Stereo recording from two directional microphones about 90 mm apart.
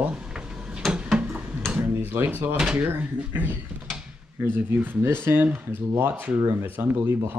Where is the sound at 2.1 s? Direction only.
25° right (ahead or behind).